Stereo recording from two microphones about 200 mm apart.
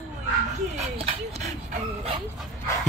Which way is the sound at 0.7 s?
30° right (ahead or behind).